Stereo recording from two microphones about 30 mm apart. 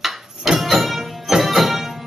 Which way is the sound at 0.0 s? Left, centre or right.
Centre.